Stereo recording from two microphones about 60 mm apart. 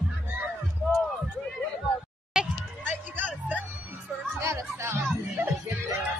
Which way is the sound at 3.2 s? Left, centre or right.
Right.